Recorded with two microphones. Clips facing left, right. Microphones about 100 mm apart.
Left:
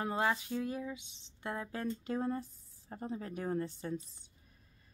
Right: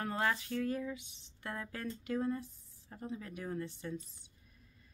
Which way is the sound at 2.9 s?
35° left (ahead or behind).